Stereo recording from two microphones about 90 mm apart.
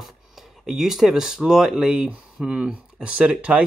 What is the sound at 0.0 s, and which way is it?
A man's voice, 5° right (ahead or behind).